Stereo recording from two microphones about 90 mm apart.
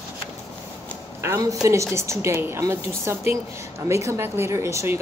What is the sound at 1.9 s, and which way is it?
A woman's voice, 35° right (ahead or behind).